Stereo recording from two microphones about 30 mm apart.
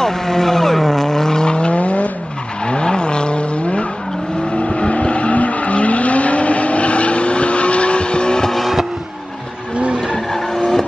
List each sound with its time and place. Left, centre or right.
0.0 s vehicle: centre
1.4 s vehicle: left
1.7 s vehicle: left
2.6 s vehicle: left
8.5 s vehicle: centre
10.1 s vehicle: centre